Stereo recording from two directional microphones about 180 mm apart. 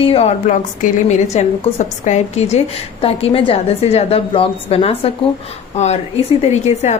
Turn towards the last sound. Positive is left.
turn(degrees=40)  # may be behind; listen again after turning